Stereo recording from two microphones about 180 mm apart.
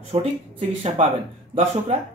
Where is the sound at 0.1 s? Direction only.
35° right (ahead or behind).